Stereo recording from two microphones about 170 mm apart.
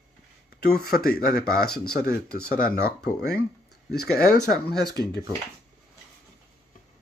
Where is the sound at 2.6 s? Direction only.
70° left (ahead or behind).